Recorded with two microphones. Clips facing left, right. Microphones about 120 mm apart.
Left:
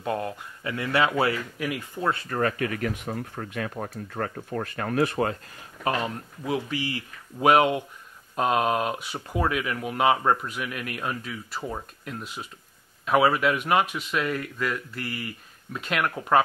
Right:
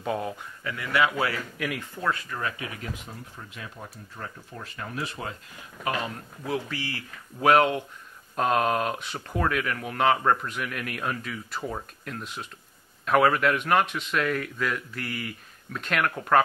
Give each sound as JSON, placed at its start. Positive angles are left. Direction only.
{"t": 0.0, "sound": "speech", "side_deg": 0}
{"t": 0.7, "sound": "speech", "side_deg": 30}
{"t": 2.2, "sound": "speech", "side_deg": 50}
{"t": 5.9, "sound": "speech", "side_deg": 25}
{"t": 8.4, "sound": "speech", "side_deg": 5}